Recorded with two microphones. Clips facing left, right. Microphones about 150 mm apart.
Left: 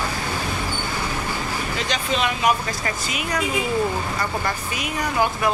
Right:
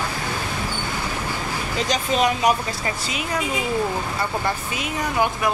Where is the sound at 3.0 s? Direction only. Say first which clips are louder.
Left 1 dB; 30° right (ahead or behind).